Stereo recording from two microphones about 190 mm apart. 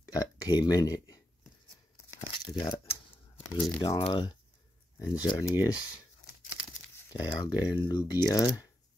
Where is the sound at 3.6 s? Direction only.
15° left (ahead or behind).